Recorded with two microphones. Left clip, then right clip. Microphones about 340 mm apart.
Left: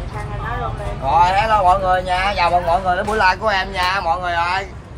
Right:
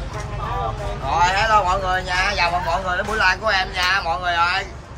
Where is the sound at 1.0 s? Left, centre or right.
Centre.